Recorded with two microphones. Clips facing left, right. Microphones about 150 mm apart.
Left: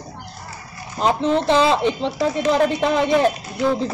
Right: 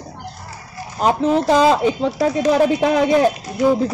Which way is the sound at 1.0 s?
5° right (ahead or behind).